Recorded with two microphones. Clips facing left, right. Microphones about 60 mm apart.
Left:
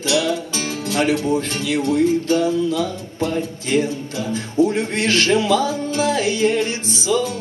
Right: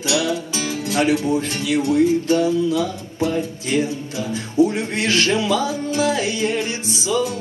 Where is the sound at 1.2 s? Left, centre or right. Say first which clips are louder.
Even; centre.